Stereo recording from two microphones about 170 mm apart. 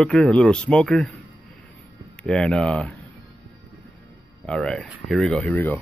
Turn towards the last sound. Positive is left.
turn(degrees=10)  # may be behind; listen again after turning